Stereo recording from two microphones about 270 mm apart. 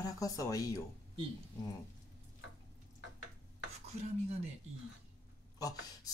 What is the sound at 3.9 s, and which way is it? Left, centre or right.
Speech, right.